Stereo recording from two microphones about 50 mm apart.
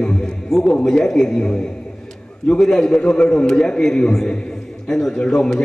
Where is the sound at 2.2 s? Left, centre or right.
Centre.